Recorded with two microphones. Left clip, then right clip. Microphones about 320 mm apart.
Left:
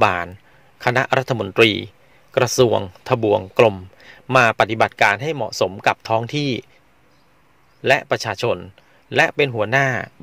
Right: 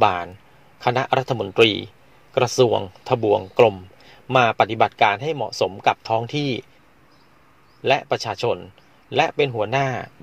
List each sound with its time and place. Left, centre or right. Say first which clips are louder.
0.0 s speech: left 1 dB; left
7.8 s speech: left 3 dB; left